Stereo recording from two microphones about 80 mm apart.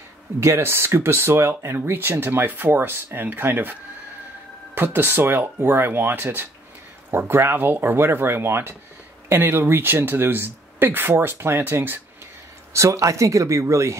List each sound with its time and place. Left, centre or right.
0.4 s speech: right
4.7 s speech: right
12.7 s speech: right